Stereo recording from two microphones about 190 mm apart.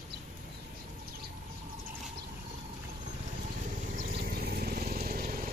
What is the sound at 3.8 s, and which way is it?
Vehicle, 45° right (ahead or behind).